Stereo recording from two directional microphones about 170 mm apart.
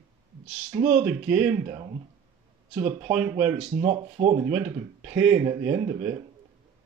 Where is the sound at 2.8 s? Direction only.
10° right (ahead or behind).